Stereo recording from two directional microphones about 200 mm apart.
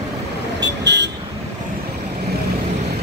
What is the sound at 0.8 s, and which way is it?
Vehicle, 60° right (ahead or behind).